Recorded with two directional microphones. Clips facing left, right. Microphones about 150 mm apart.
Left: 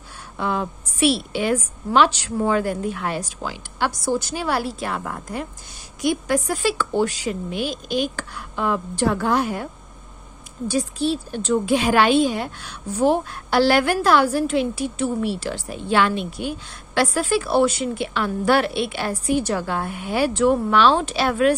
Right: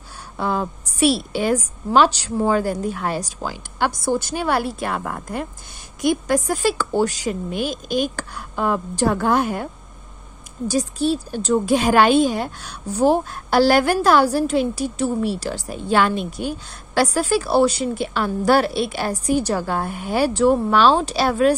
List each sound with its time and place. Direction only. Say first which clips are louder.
0.4 s a woman's voice: right 1 dB; 35° right (ahead or behind)
10.7 s a woman's voice: right 2 dB; 40° right (ahead or behind)